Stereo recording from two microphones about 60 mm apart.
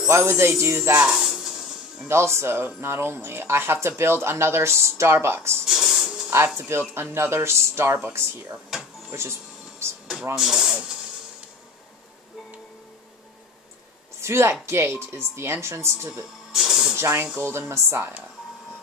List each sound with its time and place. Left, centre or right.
0.1 s speech: right
1.2 s music: centre
2.0 s speech: right
5.7 s music: centre
6.6 s speech: right
9.1 s music: right
10.3 s speech: centre
14.2 s a woman's voice: right
16.5 s music: centre
16.9 s speech: right